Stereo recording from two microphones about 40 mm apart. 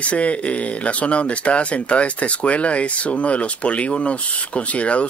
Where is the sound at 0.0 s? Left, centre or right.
Left.